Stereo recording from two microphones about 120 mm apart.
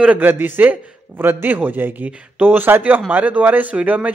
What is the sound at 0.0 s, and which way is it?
A man's voice, 15° right (ahead or behind).